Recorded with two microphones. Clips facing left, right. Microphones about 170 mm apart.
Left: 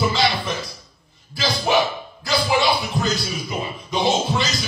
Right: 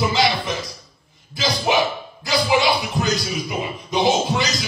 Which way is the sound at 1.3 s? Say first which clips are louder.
Even; 20° right (ahead or behind).